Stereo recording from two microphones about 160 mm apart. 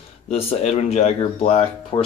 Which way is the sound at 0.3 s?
40° left (ahead or behind).